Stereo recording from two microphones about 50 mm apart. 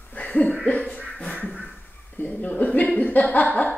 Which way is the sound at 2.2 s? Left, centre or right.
Left.